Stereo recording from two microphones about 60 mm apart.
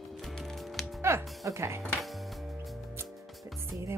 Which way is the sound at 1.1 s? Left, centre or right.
Right.